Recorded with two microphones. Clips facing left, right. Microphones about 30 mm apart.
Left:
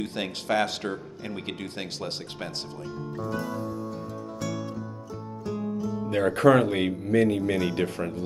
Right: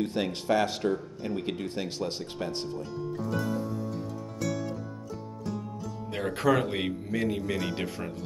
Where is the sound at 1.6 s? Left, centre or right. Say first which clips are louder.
Right 2 dB; left.